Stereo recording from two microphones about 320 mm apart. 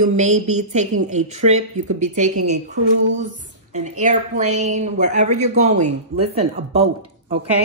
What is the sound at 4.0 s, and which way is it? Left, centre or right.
Speech, right.